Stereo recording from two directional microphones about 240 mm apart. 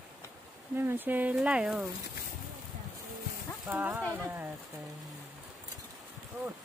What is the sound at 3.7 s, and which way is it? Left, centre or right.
Speech, centre.